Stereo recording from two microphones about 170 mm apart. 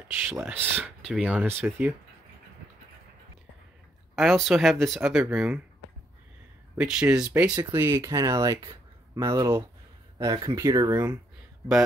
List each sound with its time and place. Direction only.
0.3 s speech: 10° right (ahead or behind)
4.1 s speech: centre (ahead or behind)
6.8 s speech: 5° right (ahead or behind)